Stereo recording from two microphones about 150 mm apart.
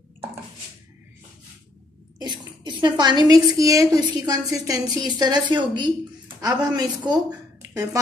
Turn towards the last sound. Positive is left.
turn(degrees=-25)  # may be behind; listen again after turning